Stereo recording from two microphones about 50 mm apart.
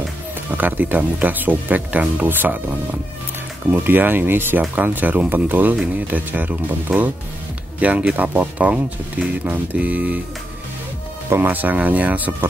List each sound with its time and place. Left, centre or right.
0.5 s speech: right
4.6 s speech: right
8.3 s speech: right
8.6 s speech: right
9.4 s speech: right
11.4 s speech: right